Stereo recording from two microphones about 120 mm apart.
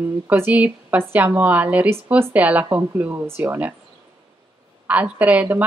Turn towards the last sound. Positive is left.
turn(degrees=-15)  # may be behind; listen again after turning